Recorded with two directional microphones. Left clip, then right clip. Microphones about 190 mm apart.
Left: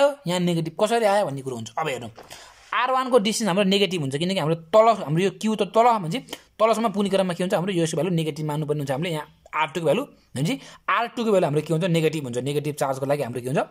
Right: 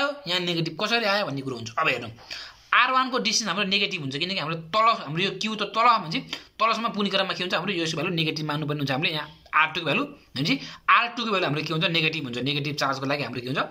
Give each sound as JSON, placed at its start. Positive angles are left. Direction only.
{"t": 0.0, "sound": "a man's voice", "side_deg": 40}